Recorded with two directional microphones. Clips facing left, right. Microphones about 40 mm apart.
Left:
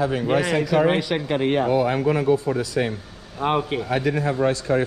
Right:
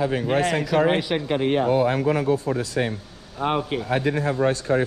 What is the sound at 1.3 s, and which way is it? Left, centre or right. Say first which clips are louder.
Speech: even; left.